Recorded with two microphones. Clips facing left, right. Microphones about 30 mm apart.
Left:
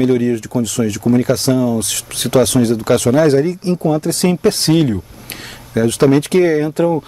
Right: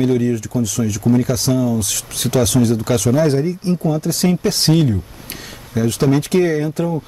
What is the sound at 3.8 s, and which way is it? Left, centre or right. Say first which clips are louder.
Speech: left 4 dB; left.